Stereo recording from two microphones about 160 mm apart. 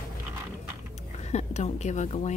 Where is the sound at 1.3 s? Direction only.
45° left (ahead or behind).